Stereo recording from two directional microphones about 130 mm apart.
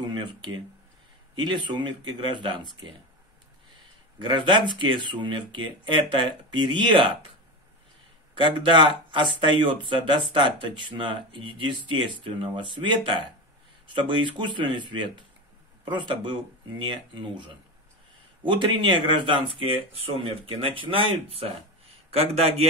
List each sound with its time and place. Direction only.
0.0 s speech: 35° right (ahead or behind)
4.2 s speech: 40° right (ahead or behind)
8.4 s speech: 40° right (ahead or behind)